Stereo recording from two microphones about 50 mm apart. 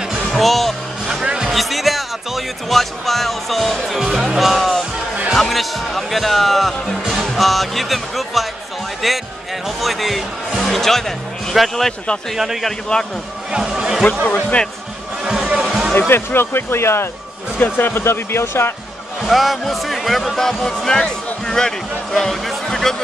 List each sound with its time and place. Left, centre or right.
0.3 s speech: centre
1.2 s music: centre
1.5 s speech: centre
12.9 s speech: centre
13.5 s speech: centre
14.2 s speech: left
15.2 s a sound: centre
16.1 s speech: left
17.6 s speech: left
19.2 s speech: centre